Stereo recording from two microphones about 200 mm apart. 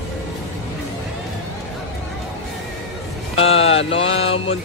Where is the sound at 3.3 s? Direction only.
30° left (ahead or behind).